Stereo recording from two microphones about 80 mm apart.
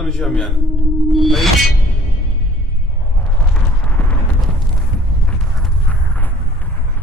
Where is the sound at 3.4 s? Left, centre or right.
Centre.